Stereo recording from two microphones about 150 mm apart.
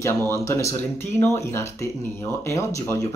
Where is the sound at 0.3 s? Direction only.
20° left (ahead or behind).